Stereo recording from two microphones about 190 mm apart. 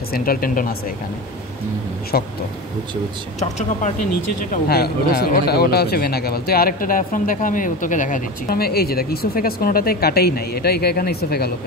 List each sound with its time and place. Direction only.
0.1 s speech: 50° left (ahead or behind)
2.1 s speech: 55° left (ahead or behind)
3.3 s speech: 35° left (ahead or behind)
4.4 s speech: 50° left (ahead or behind)